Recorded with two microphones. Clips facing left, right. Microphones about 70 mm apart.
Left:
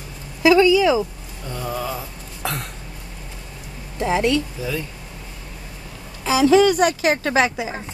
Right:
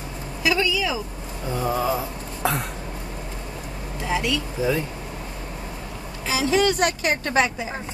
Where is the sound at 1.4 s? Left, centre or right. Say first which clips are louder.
Right 3 dB; centre.